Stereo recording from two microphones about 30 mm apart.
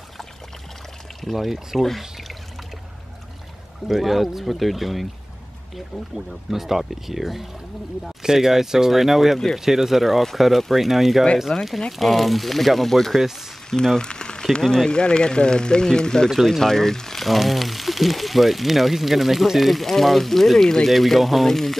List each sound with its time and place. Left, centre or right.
1.3 s speech: centre
3.8 s speech: centre
6.1 s speech: centre
8.2 s speech: centre
11.5 s speech: left
12.0 s speech: centre
13.9 s a sound: left
14.4 s speech: centre
14.9 s speech: left; by 17.2 s centre
17.2 s speech: centre
19.7 s speech: centre
20.9 s speech: centre